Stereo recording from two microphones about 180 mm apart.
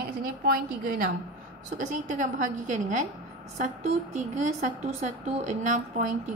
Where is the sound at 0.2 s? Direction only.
55° right (ahead or behind).